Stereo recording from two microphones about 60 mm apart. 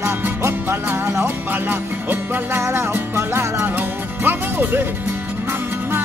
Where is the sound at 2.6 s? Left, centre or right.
Right.